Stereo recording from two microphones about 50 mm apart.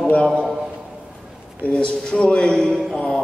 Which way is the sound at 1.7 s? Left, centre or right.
Centre.